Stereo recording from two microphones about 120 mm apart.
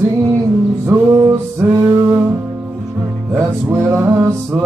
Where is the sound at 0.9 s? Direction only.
20° right (ahead or behind).